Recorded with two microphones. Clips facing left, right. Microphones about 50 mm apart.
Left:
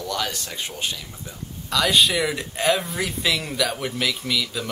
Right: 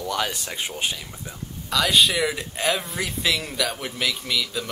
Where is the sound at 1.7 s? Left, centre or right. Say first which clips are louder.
Even; centre.